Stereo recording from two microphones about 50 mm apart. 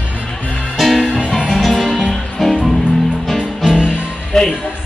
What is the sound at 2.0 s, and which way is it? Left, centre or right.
Music, centre.